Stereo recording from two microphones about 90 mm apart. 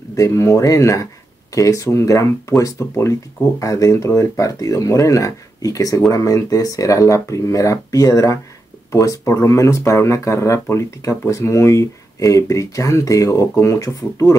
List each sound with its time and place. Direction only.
0.1 s speech: 35° left (ahead or behind)